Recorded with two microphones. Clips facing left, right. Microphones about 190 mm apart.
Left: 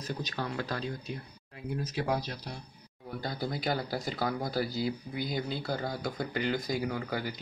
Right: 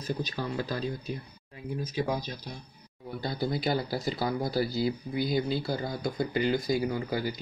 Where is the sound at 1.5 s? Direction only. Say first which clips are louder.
Right 1 dB; 70° left (ahead or behind).